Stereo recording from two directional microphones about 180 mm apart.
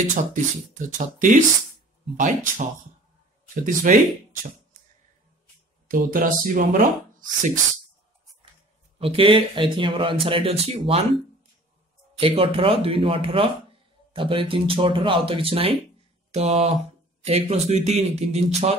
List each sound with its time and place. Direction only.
0.1 s speech: 45° right (ahead or behind)
3.9 s speech: 45° right (ahead or behind)
5.9 s speech: 50° right (ahead or behind)
8.9 s speech: 30° right (ahead or behind)
12.2 s speech: 30° right (ahead or behind)